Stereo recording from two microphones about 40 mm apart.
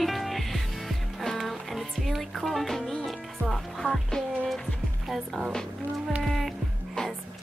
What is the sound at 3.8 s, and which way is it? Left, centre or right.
Music, centre.